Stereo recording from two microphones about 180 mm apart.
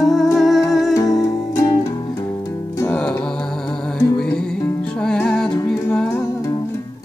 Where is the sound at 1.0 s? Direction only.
20° left (ahead or behind).